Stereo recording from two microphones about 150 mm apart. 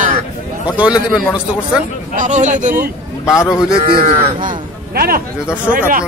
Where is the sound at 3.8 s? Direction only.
65° right (ahead or behind).